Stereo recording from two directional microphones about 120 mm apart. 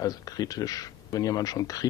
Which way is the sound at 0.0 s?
30° left (ahead or behind).